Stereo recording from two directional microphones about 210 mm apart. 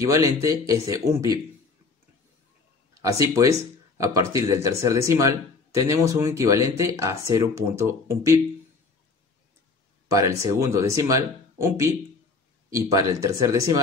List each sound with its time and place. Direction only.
0.0 s speech: 15° right (ahead or behind)
2.9 s speech: 15° right (ahead or behind)
10.0 s speech: 15° right (ahead or behind)